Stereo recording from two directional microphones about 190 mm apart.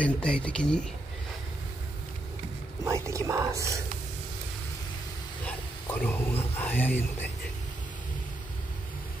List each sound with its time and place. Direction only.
0.0 s speech: 5° left (ahead or behind)
2.8 s speech: 15° right (ahead or behind)
5.4 s speech: 10° left (ahead or behind)